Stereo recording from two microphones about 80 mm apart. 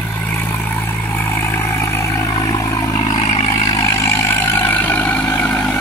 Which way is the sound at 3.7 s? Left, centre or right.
Left.